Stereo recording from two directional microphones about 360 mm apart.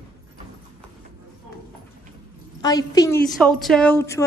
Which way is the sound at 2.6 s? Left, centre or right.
Centre.